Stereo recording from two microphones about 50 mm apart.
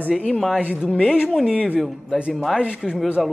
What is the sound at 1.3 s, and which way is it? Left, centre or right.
A man's voice, centre.